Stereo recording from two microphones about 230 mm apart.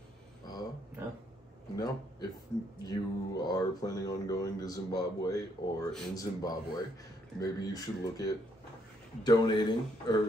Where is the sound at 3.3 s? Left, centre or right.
Centre.